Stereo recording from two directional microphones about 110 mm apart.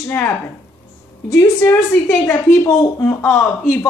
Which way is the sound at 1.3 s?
25° left (ahead or behind).